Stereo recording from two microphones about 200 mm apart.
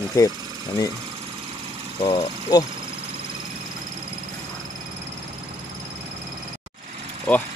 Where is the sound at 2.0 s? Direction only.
20° left (ahead or behind).